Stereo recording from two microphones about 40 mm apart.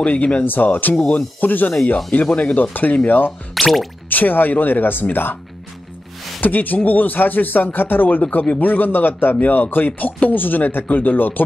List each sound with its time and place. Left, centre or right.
0.0 s speech: left
0.5 s speech: left
3.1 s speech: left
3.6 s speech: centre
4.1 s speech: left
6.4 s speech: left
8.2 s speech: left